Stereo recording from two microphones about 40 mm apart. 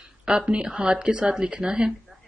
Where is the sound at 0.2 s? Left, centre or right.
Right.